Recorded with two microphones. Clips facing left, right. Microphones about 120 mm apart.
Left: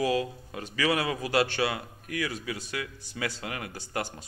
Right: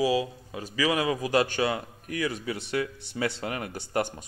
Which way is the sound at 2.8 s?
30° right (ahead or behind).